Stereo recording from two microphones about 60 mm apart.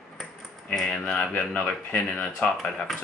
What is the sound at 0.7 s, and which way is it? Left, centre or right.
Speech, centre.